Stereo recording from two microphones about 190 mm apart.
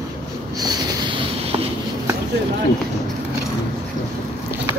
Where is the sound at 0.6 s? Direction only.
25° right (ahead or behind).